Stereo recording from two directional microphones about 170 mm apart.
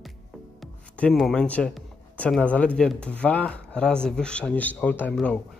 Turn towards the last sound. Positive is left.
turn(degrees=5)  # may be behind; listen again after turning